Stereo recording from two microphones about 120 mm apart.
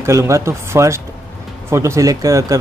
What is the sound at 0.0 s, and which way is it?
Speech, 25° right (ahead or behind).